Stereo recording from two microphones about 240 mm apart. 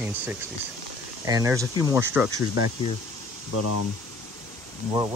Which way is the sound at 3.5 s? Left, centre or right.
Left.